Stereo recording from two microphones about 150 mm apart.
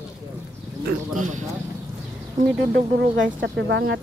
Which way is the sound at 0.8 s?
55° right (ahead or behind).